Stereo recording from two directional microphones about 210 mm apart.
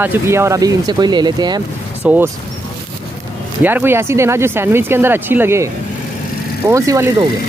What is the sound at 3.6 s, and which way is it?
Speech, 10° right (ahead or behind).